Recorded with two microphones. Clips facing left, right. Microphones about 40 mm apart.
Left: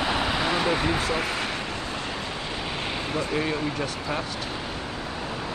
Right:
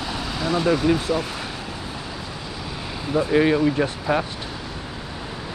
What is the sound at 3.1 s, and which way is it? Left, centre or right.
Speech, centre.